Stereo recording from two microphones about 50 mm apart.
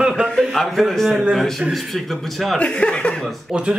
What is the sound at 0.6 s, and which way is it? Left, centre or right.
Speech, centre.